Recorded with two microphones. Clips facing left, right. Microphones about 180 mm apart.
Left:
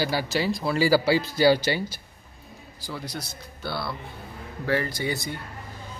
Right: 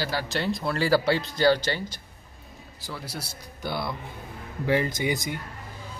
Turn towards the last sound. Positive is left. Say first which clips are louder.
# right 1 dB
turn(degrees=-15)  # may be behind; listen again after turning